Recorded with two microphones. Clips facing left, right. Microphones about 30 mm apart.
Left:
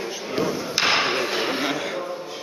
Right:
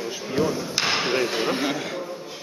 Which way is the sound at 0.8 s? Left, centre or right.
Left.